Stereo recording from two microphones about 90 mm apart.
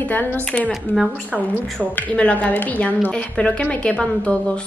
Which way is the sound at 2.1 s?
15° left (ahead or behind).